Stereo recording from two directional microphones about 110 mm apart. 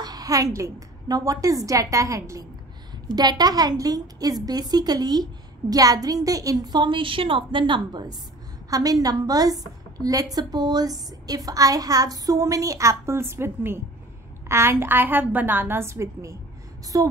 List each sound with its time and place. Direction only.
0.0 s a woman's voice: 35° right (ahead or behind)